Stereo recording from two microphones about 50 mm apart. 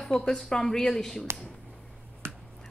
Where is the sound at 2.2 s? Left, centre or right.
Right.